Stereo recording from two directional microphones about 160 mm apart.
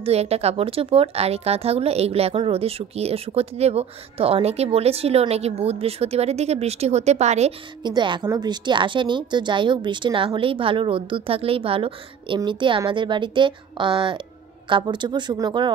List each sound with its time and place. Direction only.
0.0 s a woman's voice: 40° right (ahead or behind)
7.8 s a woman's voice: 30° right (ahead or behind)